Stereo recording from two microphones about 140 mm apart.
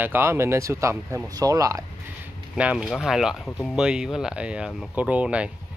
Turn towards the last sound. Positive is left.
turn(degrees=-10)  # may be behind; listen again after turning